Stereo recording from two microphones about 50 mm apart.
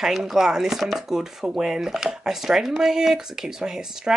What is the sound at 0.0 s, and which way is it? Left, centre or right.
Speech, centre.